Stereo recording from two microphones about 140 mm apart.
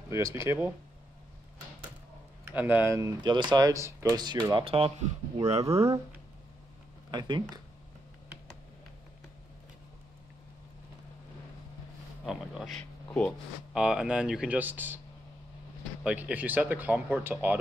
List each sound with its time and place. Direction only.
0.1 s speech: 20° right (ahead or behind)
2.4 s speech: 10° right (ahead or behind); by 4.6 s 30° right (ahead or behind)
4.6 s speech: 45° right (ahead or behind)
7.1 s speech: 30° right (ahead or behind)
12.3 s speech: centre (ahead or behind)
13.7 s speech: 5° right (ahead or behind)
16.0 s speech: 5° right (ahead or behind)